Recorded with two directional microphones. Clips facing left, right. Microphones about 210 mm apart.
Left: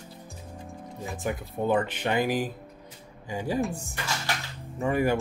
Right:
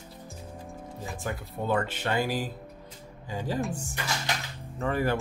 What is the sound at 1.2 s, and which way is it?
Speech, 20° left (ahead or behind).